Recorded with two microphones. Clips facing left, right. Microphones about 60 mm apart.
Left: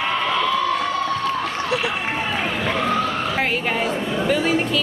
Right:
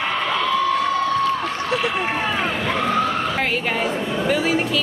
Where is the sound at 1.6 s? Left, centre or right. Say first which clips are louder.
Right 2 dB; centre.